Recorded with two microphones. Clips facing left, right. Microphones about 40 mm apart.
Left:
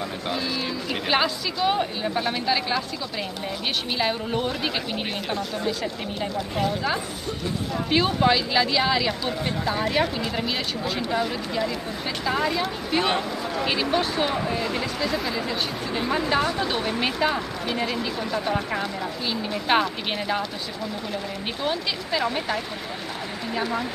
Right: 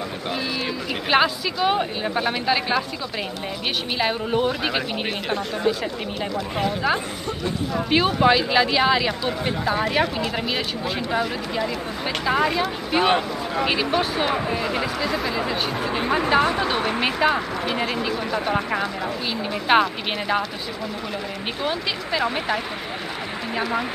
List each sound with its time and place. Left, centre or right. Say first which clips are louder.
1.1 s speech: right 5 dB; centre
4.0 s speech: right 4 dB; centre
16.2 s speech: right 5 dB; right
21.6 s speech: right 1 dB; centre